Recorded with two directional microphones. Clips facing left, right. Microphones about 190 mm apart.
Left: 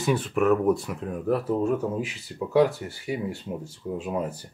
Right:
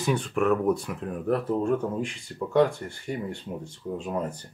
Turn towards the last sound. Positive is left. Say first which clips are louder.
# left 1 dB
turn(degrees=10)  # may be behind; listen again after turning